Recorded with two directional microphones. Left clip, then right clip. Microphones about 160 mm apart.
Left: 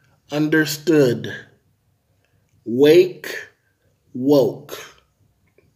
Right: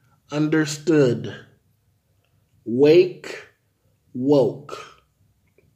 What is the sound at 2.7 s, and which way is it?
Speech, 5° right (ahead or behind).